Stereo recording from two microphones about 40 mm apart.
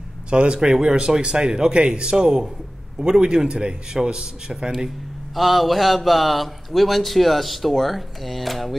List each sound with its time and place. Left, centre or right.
0.3 s a man's voice: right
4.7 s speech: centre